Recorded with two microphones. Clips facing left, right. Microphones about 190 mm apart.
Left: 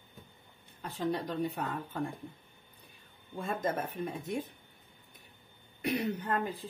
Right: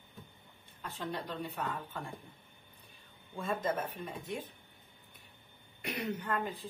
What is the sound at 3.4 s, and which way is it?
Speech, 45° left (ahead or behind).